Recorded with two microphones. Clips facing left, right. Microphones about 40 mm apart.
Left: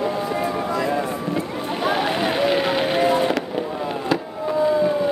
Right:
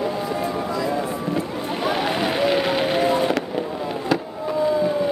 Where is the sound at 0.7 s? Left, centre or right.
Left.